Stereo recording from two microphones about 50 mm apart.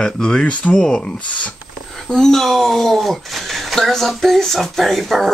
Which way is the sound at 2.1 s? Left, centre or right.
Centre.